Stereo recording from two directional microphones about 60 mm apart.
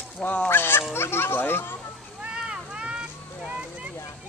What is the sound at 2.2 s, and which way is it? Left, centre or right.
Vehicle, centre.